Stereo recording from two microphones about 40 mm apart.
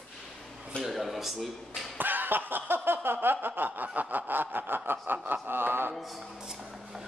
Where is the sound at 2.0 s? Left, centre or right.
Right.